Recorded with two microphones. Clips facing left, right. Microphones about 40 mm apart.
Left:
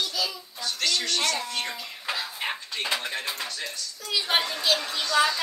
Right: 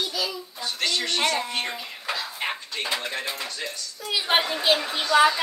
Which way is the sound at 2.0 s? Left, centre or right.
Centre.